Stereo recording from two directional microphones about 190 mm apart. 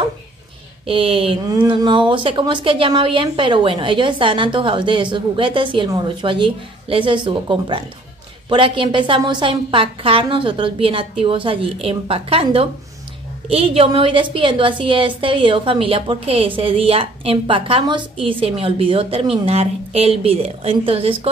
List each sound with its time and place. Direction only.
0.8 s a woman's voice: 30° right (ahead or behind)
1.5 s a woman's voice: 20° right (ahead or behind)